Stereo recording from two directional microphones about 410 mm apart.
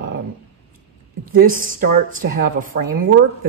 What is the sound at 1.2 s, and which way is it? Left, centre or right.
A woman's voice, centre.